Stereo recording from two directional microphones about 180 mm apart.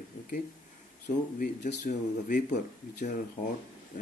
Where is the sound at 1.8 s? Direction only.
45° left (ahead or behind).